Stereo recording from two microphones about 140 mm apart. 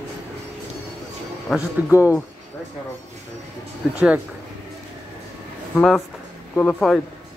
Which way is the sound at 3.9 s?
10° right (ahead or behind).